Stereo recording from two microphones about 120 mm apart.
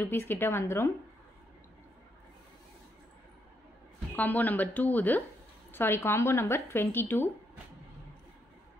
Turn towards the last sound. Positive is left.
turn(degrees=15)  # may be behind; listen again after turning